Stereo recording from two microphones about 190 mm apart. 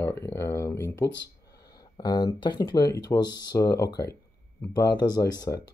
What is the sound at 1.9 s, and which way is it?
Speech, 20° left (ahead or behind).